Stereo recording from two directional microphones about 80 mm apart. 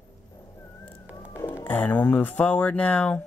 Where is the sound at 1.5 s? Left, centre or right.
Left.